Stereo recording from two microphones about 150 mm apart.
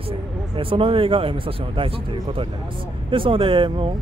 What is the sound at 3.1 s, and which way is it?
Speech, 35° right (ahead or behind).